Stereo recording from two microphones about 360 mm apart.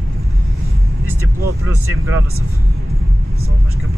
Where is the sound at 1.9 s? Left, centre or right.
Right.